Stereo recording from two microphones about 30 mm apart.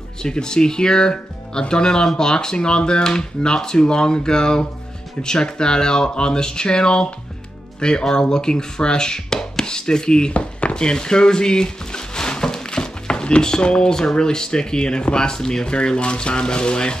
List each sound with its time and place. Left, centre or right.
0.2 s speech: left
10.7 s music: left
14.1 s speech: left
15.7 s speech: left